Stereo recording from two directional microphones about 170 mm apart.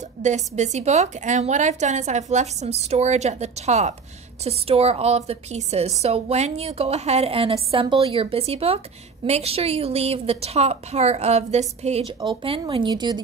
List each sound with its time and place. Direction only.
0.2 s a woman's voice: 45° right (ahead or behind)
12.2 s speech: 30° right (ahead or behind)